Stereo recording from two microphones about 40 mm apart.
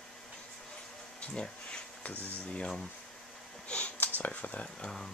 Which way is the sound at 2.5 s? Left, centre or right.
Centre.